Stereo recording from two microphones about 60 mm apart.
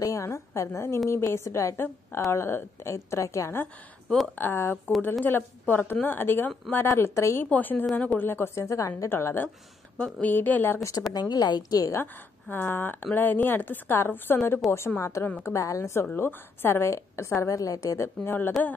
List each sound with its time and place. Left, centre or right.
0.0 s a woman's voice: left
4.4 s speech: left
6.9 s a woman's voice: left
7.4 s a woman's voice: left
8.6 s a woman's voice: left
9.1 s speech: left
9.9 s a woman's voice: centre
10.2 s a woman's voice: left
10.8 s speech: left
11.1 s a woman's voice: left
12.0 s speech: left
15.0 s a woman's voice: left
16.1 s a woman's voice: left
18.6 s a woman's voice: left